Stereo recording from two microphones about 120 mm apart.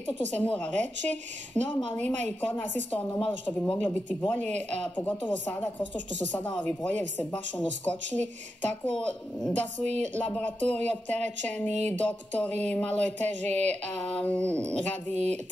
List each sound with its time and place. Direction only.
0.3 s a woman's voice: 10° left (ahead or behind)